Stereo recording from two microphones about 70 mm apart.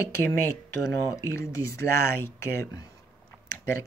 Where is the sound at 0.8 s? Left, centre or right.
Left.